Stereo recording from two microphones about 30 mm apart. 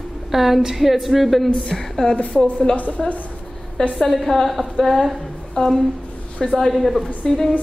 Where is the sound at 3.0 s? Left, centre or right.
Centre.